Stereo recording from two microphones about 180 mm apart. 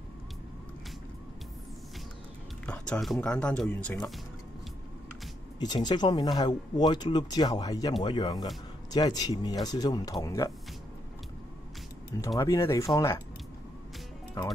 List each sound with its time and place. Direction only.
2.6 s speech: 5° left (ahead or behind)
5.6 s speech: 25° left (ahead or behind)
12.4 s speech: 15° left (ahead or behind)